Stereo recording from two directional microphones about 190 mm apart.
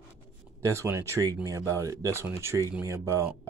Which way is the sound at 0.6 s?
15° right (ahead or behind).